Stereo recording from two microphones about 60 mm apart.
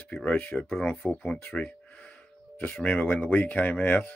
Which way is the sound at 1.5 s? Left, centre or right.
Centre.